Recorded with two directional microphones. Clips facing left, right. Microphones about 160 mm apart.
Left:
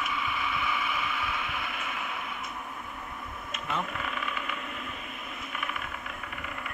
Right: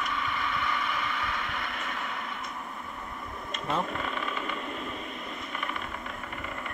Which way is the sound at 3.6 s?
30° right (ahead or behind).